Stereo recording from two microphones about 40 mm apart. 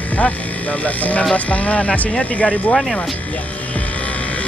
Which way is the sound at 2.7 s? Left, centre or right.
Centre.